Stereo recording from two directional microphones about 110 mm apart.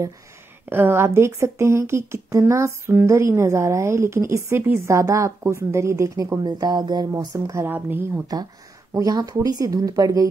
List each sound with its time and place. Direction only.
0.7 s speech: 20° right (ahead or behind); by 7.2 s 40° right (ahead or behind)
7.3 s speech: 25° right (ahead or behind)
8.9 s speech: 35° right (ahead or behind)